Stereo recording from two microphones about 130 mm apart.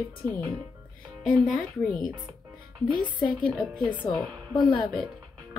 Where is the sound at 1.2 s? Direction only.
85° left.